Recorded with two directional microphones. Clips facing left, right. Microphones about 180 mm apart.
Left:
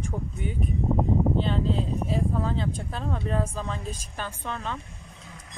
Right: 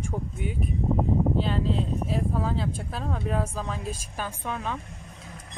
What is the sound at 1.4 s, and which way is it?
Speech, centre (ahead or behind).